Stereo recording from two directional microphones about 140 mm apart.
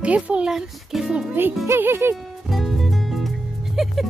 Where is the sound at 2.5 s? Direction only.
Centre (ahead or behind).